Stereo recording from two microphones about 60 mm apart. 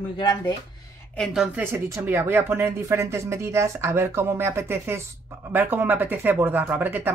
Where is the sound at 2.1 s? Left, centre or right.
Right.